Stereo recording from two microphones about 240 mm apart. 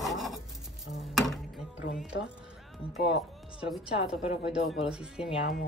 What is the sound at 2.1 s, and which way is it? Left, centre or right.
Speech, left.